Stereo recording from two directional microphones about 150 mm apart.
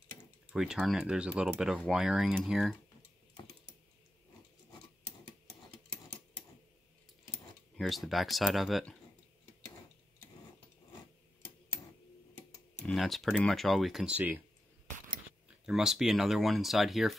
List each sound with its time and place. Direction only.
0.5 s speech: 5° right (ahead or behind)
7.7 s speech: centre (ahead or behind)
12.8 s speech: centre (ahead or behind)
15.4 s speech: 5° right (ahead or behind)